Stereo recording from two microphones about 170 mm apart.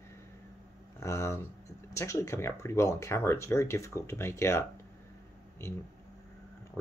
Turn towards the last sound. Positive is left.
turn(degrees=15)  # may be behind; listen again after turning